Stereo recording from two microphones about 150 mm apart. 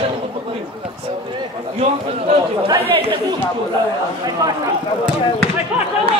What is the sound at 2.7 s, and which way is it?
Speech, 35° right (ahead or behind).